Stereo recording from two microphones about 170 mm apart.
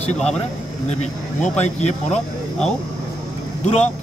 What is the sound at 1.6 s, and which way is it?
Speech, 40° left (ahead or behind).